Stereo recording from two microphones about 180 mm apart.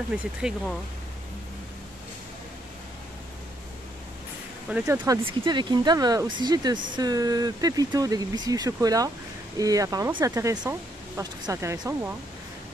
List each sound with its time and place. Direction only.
0.4 s speech: 5° right (ahead or behind)
4.6 s speech: 10° right (ahead or behind)
5.2 s speech: 25° right (ahead or behind)